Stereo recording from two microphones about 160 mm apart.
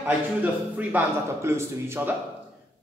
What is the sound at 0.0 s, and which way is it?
A man's voice, 10° right (ahead or behind).